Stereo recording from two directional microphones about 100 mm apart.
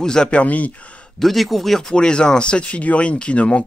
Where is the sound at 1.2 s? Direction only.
Centre (ahead or behind).